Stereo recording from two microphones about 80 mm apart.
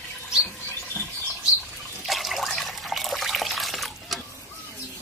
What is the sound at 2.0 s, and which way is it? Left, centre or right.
Water, centre.